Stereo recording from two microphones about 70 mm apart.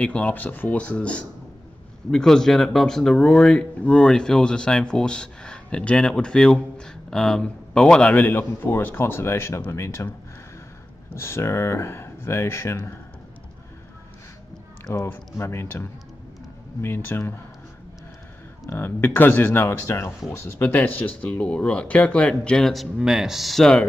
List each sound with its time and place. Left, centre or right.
0.0 s speech: centre; by 10.1 s left
11.1 s speech: left
14.9 s speech: left
18.7 s speech: left; by 22.7 s centre
22.9 s speech: centre